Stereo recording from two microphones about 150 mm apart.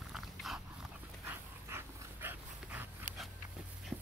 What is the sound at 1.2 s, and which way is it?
Dog, 15° right (ahead or behind).